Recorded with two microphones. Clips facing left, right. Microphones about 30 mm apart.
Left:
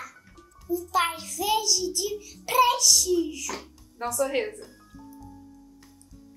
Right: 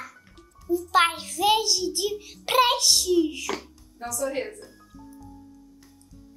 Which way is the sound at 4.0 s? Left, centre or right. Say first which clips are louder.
Left 3 dB; left.